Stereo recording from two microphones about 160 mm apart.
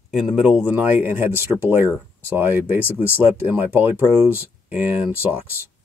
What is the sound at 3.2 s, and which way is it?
Speech, 10° right (ahead or behind).